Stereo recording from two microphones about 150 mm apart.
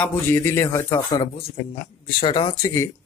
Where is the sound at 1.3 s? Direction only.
35° left (ahead or behind).